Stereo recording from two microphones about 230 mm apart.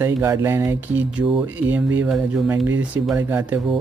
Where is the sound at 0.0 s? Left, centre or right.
Centre.